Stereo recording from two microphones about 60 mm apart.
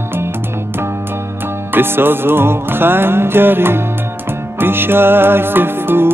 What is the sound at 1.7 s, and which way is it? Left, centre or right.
Music, right.